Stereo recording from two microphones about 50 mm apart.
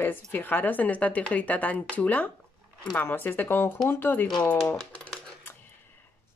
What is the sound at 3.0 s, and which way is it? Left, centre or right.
A woman's voice, left.